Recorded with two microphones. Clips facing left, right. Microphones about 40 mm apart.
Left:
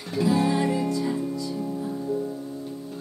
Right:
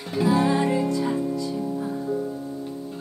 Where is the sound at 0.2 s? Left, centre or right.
Right.